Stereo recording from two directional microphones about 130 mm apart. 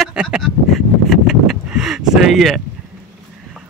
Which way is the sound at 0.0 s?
5° right (ahead or behind).